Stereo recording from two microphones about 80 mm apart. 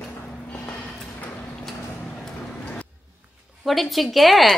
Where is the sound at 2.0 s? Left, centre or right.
Centre.